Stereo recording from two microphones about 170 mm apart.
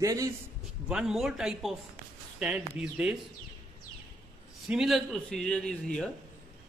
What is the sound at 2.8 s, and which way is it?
Speech, 5° right (ahead or behind).